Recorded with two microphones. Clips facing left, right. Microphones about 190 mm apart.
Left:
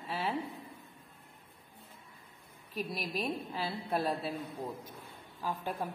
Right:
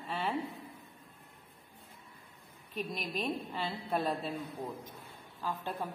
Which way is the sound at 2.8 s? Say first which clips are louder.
Left 1 dB; 5° left (ahead or behind).